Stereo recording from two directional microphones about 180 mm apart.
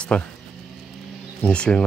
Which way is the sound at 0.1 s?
5° left (ahead or behind).